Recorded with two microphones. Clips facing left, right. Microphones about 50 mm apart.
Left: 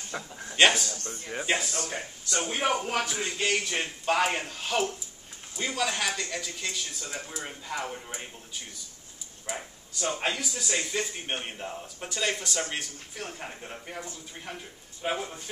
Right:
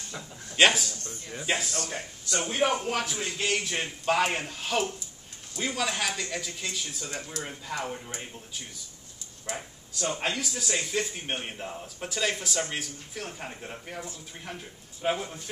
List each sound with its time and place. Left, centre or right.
0.1 s a sound: left
0.6 s speech: centre
0.9 s speech: left
1.4 s speech: centre
7.2 s speech: centre
9.5 s speech: centre
15.0 s a man's voice: centre